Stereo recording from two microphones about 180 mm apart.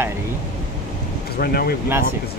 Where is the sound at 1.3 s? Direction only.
60° left (ahead or behind).